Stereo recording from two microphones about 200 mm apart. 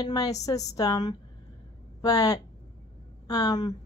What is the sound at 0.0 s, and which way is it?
A woman's voice, 20° left (ahead or behind).